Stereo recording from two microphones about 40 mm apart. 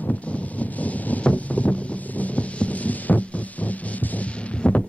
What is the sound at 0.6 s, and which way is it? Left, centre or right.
Wind noise, left.